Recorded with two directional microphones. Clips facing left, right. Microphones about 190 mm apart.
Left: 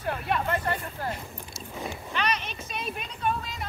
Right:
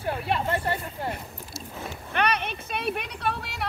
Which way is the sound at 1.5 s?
Centre (ahead or behind).